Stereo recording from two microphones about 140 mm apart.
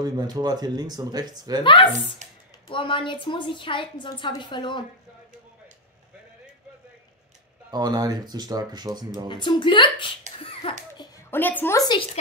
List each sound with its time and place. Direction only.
0.0 s speech: 30° right (ahead or behind)
1.6 s a woman's voice: 35° left (ahead or behind)
2.2 s speech: 60° right (ahead or behind)
2.7 s a woman's voice: 35° left (ahead or behind)
7.7 s speech: 30° right (ahead or behind)
9.3 s a woman's voice: 35° left (ahead or behind)
10.3 s a sound: 45° left (ahead or behind)
11.0 s a sound: 20° left (ahead or behind)
11.8 s a woman's voice: 35° left (ahead or behind)